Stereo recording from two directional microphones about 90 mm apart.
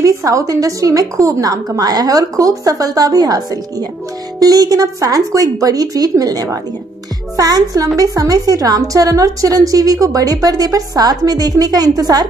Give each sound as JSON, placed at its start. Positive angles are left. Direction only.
{"t": 0.0, "sound": "a woman's voice", "side_deg": -35}